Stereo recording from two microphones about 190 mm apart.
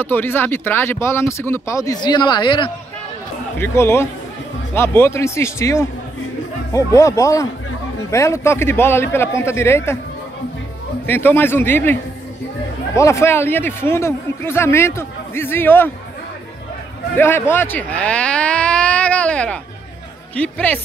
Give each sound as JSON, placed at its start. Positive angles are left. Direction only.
{"t": 0.0, "sound": "speech", "side_deg": 10}
{"t": 3.5, "sound": "speech", "side_deg": 15}
{"t": 7.0, "sound": "speech", "side_deg": 15}
{"t": 11.1, "sound": "speech", "side_deg": 10}
{"t": 17.2, "sound": "speech", "side_deg": 10}